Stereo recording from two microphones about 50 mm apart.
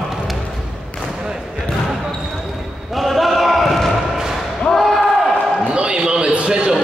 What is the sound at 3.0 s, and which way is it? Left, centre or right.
Basketball bounce, centre.